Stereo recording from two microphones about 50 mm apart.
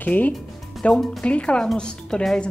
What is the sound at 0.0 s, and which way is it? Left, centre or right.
Speech, left.